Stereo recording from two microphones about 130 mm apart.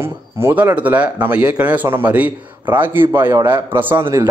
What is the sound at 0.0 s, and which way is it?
A man's voice, 20° right (ahead or behind).